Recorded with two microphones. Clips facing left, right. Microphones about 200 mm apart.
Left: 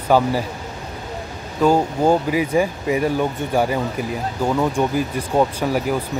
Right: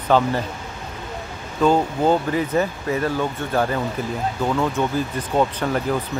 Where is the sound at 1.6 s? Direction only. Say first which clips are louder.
Left 1 dB; 10° left (ahead or behind).